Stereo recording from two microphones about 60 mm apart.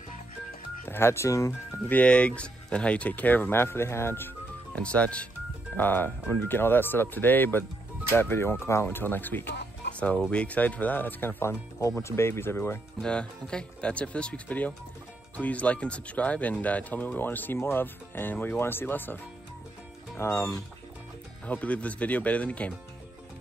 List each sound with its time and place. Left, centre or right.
0.8 s speech: left
1.9 s speech: left
4.7 s speech: left
5.8 s speech: left
8.8 s speech: left
10.3 s speech: left
11.8 s speech: left
13.0 s speech: centre; by 20.4 s left
21.5 s speech: left